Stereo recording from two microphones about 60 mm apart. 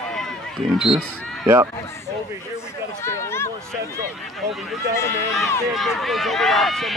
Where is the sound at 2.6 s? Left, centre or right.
Left.